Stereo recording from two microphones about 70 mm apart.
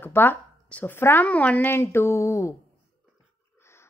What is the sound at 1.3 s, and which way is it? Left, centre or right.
Speech, left.